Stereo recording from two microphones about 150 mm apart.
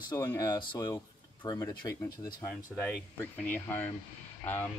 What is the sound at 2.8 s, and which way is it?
Speech, 10° left (ahead or behind).